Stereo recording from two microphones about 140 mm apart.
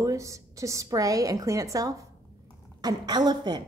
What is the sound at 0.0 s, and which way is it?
A woman's voice, 20° right (ahead or behind).